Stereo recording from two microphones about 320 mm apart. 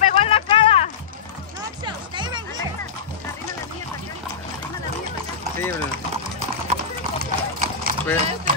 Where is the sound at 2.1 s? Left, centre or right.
Centre.